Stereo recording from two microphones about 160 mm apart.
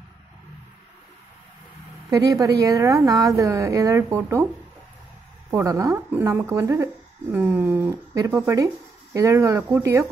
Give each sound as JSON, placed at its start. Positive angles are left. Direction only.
{"t": 2.0, "sound": "a woman's voice", "side_deg": -25}
{"t": 5.5, "sound": "a woman's voice", "side_deg": -20}